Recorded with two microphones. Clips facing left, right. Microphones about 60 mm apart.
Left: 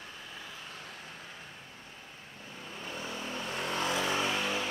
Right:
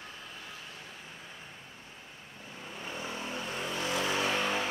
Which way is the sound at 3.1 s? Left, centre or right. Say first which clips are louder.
Even; right.